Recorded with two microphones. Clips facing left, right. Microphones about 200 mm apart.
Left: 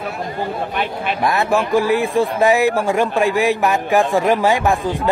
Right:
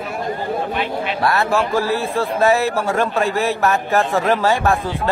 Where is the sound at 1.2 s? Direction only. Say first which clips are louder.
Left 1 dB; 15° left (ahead or behind).